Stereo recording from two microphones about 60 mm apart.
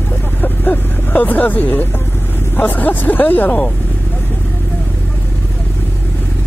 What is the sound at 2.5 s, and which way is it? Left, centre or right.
Speech, left.